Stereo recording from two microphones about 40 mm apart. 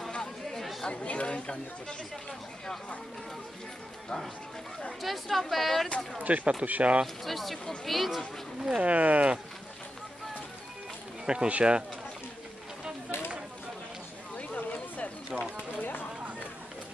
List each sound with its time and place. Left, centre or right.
0.1 s chatter: centre
0.8 s speech: left
5.0 s speech: centre
6.1 s speech: right
7.2 s speech: centre
8.5 s speech: centre
8.8 s speech: right
11.2 s speech: right
14.3 s a sound: left
15.7 s speech: left